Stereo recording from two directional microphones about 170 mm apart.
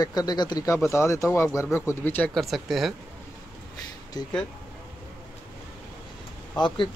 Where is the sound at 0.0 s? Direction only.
25° left (ahead or behind); by 2.9 s centre (ahead or behind).